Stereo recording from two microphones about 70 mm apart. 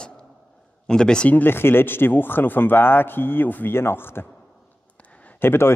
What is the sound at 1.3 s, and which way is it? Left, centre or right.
Speech, left.